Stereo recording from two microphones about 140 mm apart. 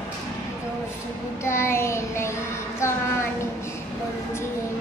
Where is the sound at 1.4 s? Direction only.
20° left (ahead or behind).